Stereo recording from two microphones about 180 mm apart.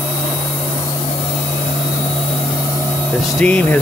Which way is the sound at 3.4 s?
5° left (ahead or behind).